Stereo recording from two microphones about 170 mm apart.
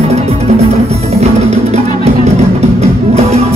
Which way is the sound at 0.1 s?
40° right (ahead or behind).